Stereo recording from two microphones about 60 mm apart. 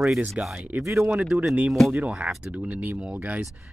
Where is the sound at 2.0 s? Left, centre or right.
Right.